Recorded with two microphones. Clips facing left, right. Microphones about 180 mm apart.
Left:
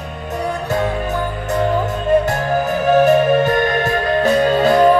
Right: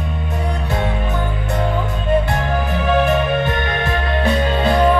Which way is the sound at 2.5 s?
40° left (ahead or behind).